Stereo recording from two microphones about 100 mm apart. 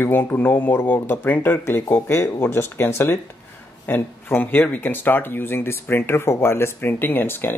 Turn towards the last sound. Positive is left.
turn(degrees=20)  # may be behind; listen again after turning